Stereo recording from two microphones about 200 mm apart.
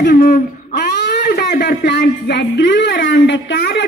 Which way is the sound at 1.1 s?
55° left (ahead or behind).